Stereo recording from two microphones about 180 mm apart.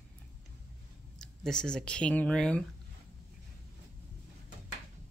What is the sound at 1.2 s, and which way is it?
Speech, 5° left (ahead or behind).